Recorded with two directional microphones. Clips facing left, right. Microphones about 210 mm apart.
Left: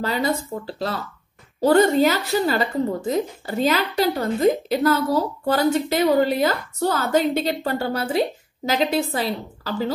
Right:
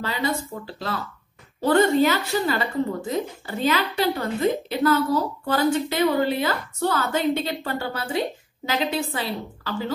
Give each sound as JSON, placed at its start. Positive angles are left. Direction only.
{"t": 0.0, "sound": "a woman's voice", "side_deg": 40}